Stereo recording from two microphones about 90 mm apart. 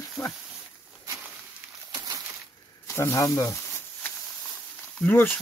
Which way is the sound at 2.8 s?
30° left (ahead or behind).